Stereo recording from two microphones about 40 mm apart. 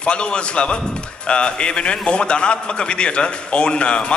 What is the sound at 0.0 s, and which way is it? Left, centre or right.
A man's voice, left.